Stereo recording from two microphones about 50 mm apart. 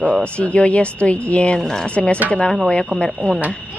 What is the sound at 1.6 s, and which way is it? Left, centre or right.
Speech, centre.